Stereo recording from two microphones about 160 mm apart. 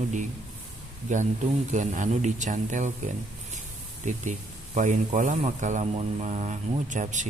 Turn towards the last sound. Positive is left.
turn(degrees=-50)  # may be behind; listen again after turning